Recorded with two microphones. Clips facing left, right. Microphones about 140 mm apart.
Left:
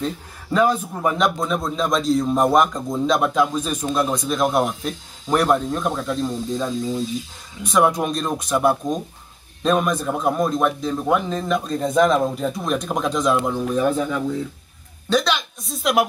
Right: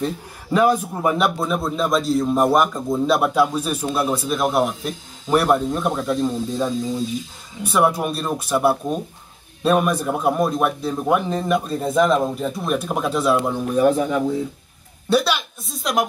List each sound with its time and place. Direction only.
0.0 s a man's voice: 10° right (ahead or behind)